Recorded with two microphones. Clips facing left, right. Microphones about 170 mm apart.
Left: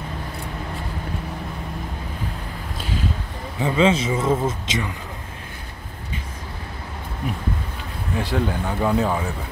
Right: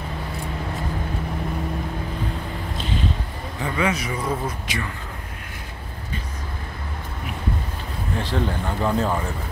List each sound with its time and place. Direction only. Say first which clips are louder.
3.5 s speech: left 6 dB; 20° left (ahead or behind)
8.2 s speech: left 2 dB; 10° left (ahead or behind)